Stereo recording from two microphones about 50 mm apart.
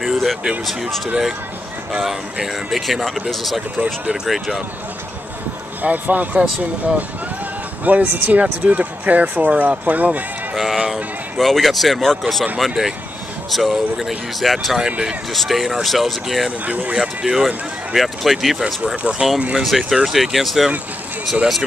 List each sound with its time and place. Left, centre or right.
0.0 s a sound: centre
0.7 s speech: centre
2.4 s speech: centre
3.7 s speech: right
4.3 s speech: centre
5.8 s speech: right
10.5 s a sound: centre
12.2 s speech: centre
14.8 s speech: centre
15.3 s speech: centre
16.6 s speech: right
16.9 s speech: centre